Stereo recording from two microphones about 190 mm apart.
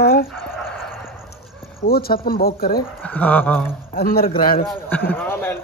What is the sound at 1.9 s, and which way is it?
Speech, 50° left (ahead or behind).